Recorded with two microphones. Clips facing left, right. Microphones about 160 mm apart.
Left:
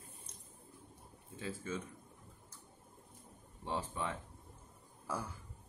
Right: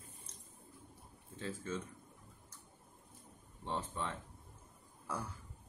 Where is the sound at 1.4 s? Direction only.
10° left (ahead or behind).